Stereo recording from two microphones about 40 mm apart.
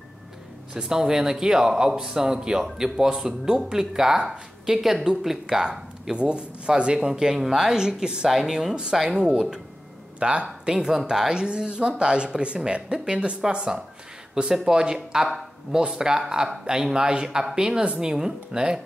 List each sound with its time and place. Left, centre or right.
0.7 s speech: centre
6.1 s speech: right
10.1 s speech: right
10.7 s speech: centre
14.5 s speech: centre